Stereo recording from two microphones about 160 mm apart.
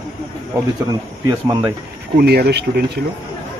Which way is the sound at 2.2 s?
85° right.